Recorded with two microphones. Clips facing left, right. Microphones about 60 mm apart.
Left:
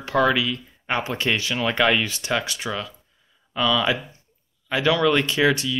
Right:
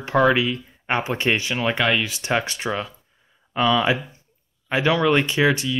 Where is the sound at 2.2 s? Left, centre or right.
Right.